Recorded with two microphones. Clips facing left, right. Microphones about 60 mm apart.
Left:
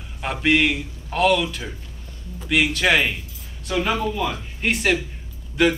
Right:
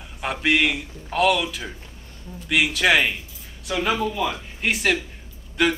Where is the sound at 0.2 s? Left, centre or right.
Centre.